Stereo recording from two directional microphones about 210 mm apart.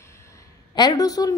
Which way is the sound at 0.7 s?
20° left (ahead or behind).